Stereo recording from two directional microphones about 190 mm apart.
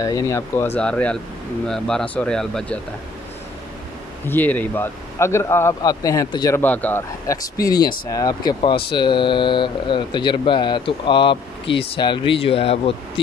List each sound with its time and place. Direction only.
0.0 s speech: 15° left (ahead or behind)
4.3 s speech: 10° left (ahead or behind); by 13.2 s 30° left (ahead or behind)